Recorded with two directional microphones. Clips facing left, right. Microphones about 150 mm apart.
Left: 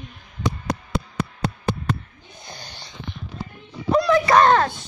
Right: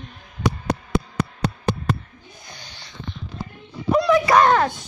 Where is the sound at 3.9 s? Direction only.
15° right (ahead or behind).